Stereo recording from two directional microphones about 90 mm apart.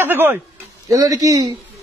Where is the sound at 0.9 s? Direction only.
40° right (ahead or behind).